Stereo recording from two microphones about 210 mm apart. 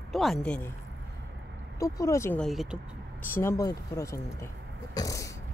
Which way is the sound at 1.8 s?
15° left (ahead or behind).